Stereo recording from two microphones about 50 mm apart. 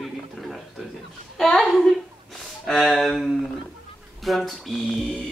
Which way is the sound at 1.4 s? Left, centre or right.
Centre.